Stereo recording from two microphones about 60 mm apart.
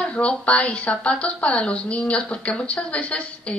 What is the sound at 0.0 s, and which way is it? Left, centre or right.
A woman's voice, centre.